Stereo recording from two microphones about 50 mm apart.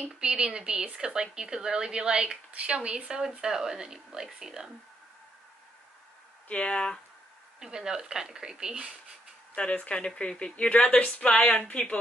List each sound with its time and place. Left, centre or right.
0.1 s a woman's voice: centre
6.5 s a woman's voice: left
7.6 s a woman's voice: centre
9.6 s a woman's voice: left